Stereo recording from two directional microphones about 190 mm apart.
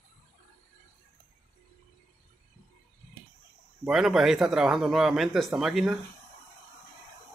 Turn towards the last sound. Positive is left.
turn(degrees=0)  # may be behind; listen again after turning